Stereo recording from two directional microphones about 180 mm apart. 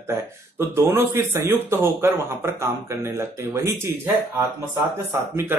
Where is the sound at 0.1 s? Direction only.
15° right (ahead or behind).